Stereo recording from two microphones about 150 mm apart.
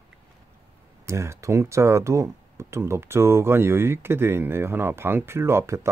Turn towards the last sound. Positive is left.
turn(degrees=-15)  # may be behind; listen again after turning